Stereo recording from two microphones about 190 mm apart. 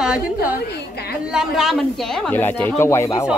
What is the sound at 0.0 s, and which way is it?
A woman's voice, 5° right (ahead or behind).